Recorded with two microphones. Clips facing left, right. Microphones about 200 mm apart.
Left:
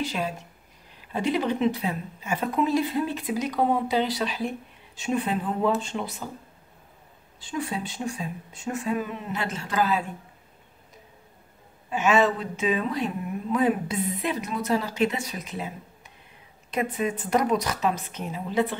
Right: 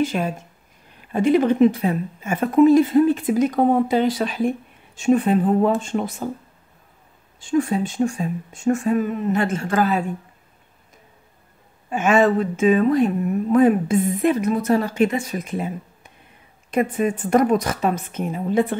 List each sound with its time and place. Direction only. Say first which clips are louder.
0.0 s a woman's voice: right 7 dB; 50° right (ahead or behind)
7.3 s a woman's voice: right 10 dB; 45° right (ahead or behind)
11.9 s a woman's voice: right 5 dB; 50° right (ahead or behind)